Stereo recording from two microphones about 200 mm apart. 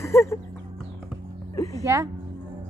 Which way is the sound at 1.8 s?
15° right (ahead or behind).